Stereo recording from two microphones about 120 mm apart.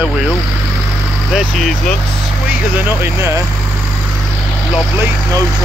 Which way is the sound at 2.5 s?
15° right (ahead or behind).